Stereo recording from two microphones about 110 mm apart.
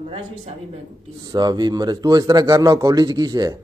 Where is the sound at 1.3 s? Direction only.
40° right (ahead or behind).